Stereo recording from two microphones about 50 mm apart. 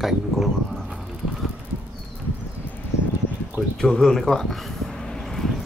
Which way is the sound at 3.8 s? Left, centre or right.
Centre.